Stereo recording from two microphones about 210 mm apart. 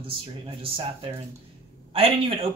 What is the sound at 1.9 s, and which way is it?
Speech, 25° right (ahead or behind).